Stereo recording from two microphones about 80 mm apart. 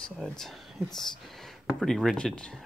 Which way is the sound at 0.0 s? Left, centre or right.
Centre.